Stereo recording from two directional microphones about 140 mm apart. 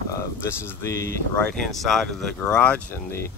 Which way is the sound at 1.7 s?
Centre (ahead or behind).